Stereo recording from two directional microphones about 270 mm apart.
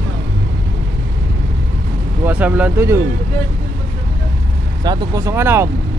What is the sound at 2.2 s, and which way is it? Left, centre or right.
Speech, centre.